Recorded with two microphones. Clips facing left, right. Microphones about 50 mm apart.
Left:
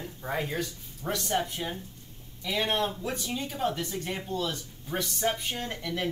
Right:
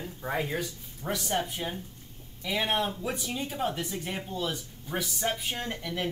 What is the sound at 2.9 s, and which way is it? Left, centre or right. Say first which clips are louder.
Speech: even; centre.